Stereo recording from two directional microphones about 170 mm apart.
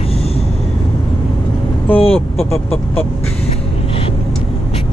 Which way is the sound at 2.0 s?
35° left (ahead or behind).